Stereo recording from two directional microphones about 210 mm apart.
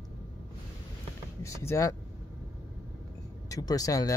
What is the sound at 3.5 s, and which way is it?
Speech, 15° left (ahead or behind).